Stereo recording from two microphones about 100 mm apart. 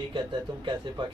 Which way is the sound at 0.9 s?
50° right (ahead or behind).